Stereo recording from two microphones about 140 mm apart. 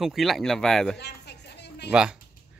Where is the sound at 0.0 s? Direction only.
Centre (ahead or behind).